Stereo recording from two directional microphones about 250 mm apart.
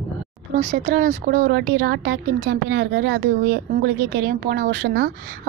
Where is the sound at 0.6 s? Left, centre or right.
Right.